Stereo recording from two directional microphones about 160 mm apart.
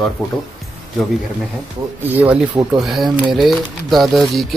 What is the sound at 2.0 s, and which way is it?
Speech, 10° right (ahead or behind).